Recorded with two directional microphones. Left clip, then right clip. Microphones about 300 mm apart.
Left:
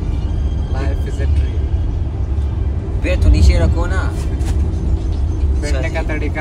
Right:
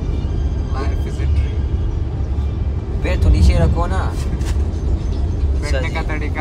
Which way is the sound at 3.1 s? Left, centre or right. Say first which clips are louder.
Left 3 dB; centre.